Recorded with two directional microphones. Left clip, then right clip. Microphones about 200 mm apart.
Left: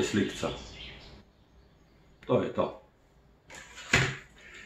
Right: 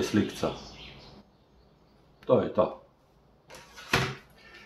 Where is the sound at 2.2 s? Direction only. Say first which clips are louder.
Right 4 dB; 35° right (ahead or behind).